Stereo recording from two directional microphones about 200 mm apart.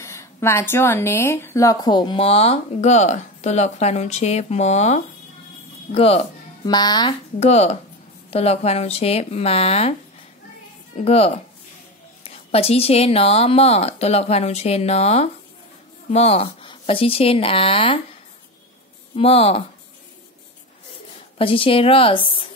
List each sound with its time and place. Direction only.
0.0 s speech: 15° left (ahead or behind)
7.3 s speech: 35° left (ahead or behind)
11.1 s speech: 30° left (ahead or behind)
19.1 s speech: 30° left (ahead or behind)
21.4 s speech: 25° left (ahead or behind)